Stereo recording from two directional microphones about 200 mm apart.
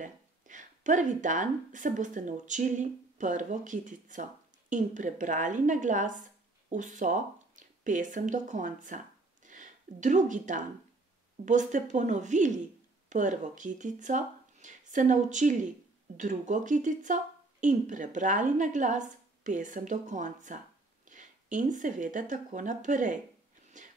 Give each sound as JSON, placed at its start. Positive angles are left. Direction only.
{"t": 0.0, "sound": "speech", "side_deg": -40}
{"t": 23.8, "sound": "whispering", "side_deg": -40}